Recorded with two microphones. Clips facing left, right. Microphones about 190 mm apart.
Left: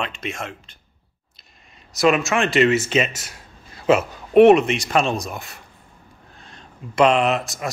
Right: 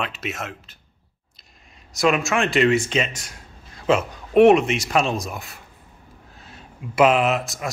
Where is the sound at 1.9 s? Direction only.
Centre (ahead or behind).